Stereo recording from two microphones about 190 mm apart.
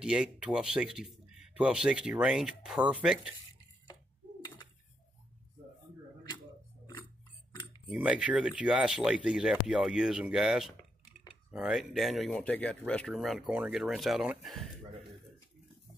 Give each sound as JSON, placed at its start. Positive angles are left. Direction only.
{"t": 0.0, "sound": "speech", "side_deg": -5}
{"t": 7.9, "sound": "speech", "side_deg": -5}